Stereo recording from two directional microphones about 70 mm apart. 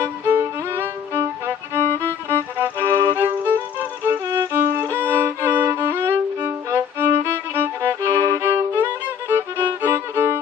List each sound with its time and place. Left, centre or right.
0.0 s violin: right
2.2 s music: right
4.0 s violin: right
4.9 s violin: right
8.1 s violin: right
8.7 s violin: right